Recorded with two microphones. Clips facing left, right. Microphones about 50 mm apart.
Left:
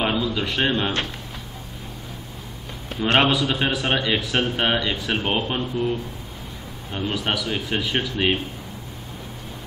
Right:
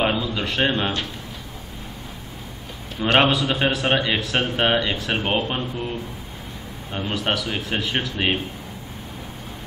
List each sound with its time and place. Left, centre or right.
0.0 s a man's voice: centre
3.0 s speech: centre